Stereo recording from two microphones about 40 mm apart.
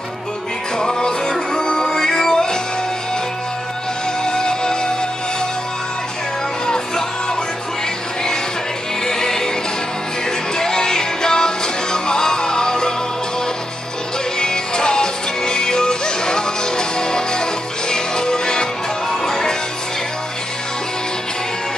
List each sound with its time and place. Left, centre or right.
0.7 s music: centre
4.2 s music: centre
9.0 s music: centre
10.6 s music: centre
14.4 s music: centre